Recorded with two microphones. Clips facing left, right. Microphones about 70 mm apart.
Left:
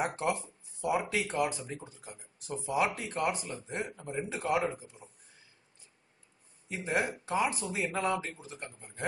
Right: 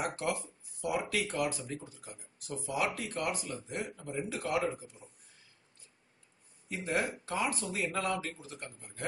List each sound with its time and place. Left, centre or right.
0.0 s speech: left
6.7 s speech: centre